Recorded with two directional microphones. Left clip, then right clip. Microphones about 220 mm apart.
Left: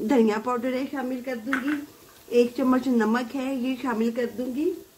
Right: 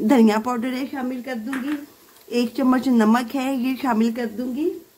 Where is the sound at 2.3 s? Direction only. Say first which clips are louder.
Even; 50° right (ahead or behind).